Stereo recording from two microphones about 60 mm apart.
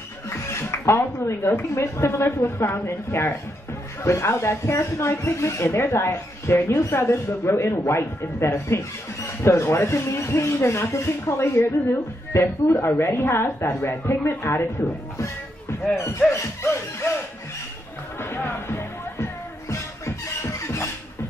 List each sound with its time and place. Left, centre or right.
0.3 s speech: left
16.0 s speech: left
18.3 s music: left
20.4 s music: left